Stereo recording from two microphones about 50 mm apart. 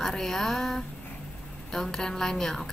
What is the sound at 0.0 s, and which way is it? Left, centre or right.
A woman's voice, centre.